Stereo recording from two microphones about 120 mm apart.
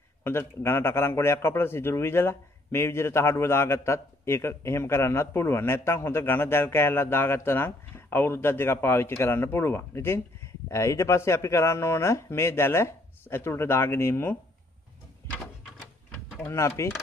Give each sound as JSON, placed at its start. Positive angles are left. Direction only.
{"t": 0.2, "sound": "a man's voice", "side_deg": 20}
{"t": 16.3, "sound": "a man's voice", "side_deg": 20}